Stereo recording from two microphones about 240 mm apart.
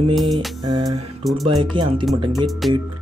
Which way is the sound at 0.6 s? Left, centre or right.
Centre.